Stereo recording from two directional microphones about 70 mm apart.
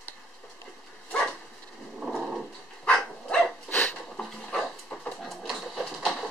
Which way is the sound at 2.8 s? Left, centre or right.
Centre.